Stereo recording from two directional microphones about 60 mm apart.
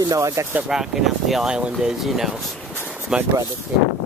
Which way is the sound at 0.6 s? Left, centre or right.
Centre.